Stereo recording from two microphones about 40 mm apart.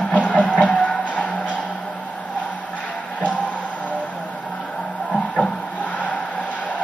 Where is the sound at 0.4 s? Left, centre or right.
Left.